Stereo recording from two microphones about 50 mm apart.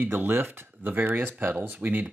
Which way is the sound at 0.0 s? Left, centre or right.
Right.